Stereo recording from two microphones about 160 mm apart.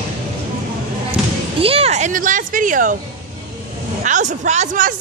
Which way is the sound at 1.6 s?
35° right (ahead or behind).